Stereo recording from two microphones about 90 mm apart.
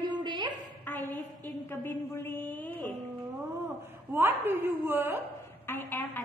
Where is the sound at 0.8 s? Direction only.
20° left (ahead or behind).